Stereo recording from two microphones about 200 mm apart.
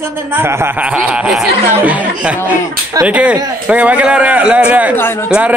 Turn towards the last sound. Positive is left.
turn(degrees=-5)  # may be behind; listen again after turning